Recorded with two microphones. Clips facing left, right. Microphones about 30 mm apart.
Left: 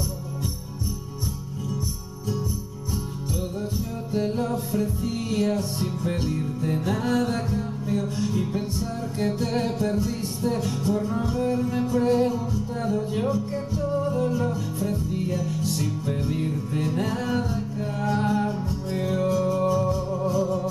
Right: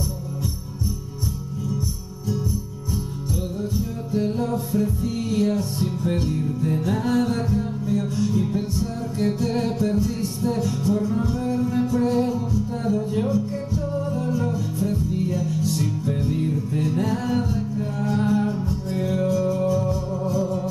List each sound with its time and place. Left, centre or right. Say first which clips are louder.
4.1 s music: right 2 dB; centre
5.9 s music: right 3 dB; centre
20.2 s music: even; left